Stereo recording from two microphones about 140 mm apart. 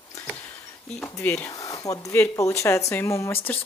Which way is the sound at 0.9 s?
15° left (ahead or behind).